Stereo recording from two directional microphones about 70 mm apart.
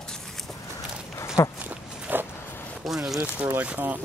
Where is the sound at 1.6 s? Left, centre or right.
Right.